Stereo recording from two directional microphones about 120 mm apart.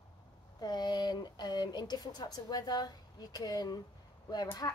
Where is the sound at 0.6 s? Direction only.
35° left (ahead or behind).